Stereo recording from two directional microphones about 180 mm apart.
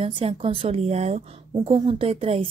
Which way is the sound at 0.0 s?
30° right (ahead or behind).